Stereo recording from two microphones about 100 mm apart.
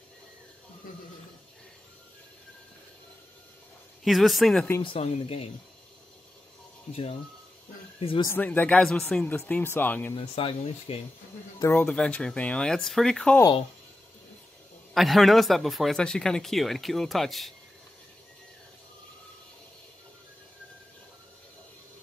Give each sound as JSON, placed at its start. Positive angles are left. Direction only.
{"t": 4.0, "sound": "speech", "side_deg": 0}
{"t": 4.8, "sound": "speech", "side_deg": 70}
{"t": 6.9, "sound": "speech", "side_deg": 85}
{"t": 8.4, "sound": "speech", "side_deg": 15}
{"t": 10.3, "sound": "speech", "side_deg": 75}
{"t": 11.7, "sound": "speech", "side_deg": 10}
{"t": 15.0, "sound": "speech", "side_deg": 0}